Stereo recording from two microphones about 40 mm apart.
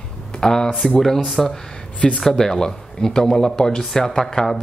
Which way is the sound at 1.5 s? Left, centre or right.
Centre.